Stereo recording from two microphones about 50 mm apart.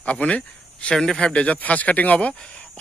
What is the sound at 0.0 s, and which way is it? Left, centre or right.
Speech, left.